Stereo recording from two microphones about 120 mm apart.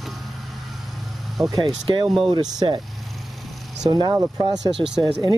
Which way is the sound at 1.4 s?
25° right (ahead or behind).